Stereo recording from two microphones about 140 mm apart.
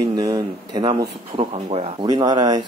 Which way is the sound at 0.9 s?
45° right (ahead or behind).